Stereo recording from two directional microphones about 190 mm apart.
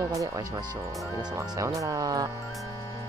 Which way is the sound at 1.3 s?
15° right (ahead or behind).